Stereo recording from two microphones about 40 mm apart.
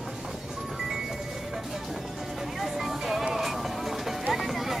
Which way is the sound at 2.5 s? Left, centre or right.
Centre.